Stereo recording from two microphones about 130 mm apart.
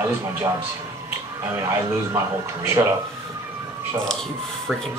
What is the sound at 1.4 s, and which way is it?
Speech, 20° right (ahead or behind).